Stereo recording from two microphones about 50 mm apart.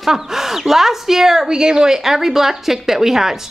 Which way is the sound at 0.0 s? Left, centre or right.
Centre.